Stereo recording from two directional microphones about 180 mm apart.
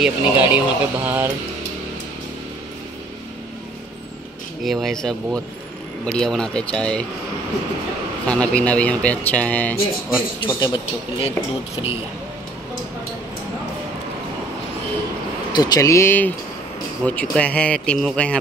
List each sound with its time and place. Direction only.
0.0 s speech: 10° right (ahead or behind)
4.6 s speech: centre (ahead or behind)
8.3 s speech: 5° left (ahead or behind)
10.4 s speech: 25° left (ahead or behind)
15.5 s speech: 20° left (ahead or behind); by 18.4 s 5° left (ahead or behind)